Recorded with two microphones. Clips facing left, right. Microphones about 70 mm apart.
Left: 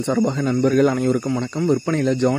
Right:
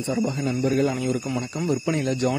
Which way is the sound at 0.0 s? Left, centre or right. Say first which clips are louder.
Left 5 dB; left.